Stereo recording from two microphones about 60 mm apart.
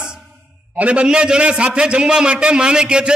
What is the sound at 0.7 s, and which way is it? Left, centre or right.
A man's voice, right.